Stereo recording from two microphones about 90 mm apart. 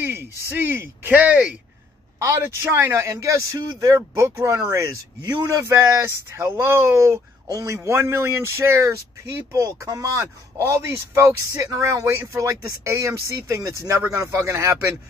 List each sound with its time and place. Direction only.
0.0 s speech: 25° right (ahead or behind)
2.1 s a man's voice: 30° right (ahead or behind)
5.6 s a man's voice: 30° right (ahead or behind)